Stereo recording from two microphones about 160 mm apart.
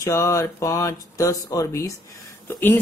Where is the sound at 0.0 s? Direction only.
20° left (ahead or behind).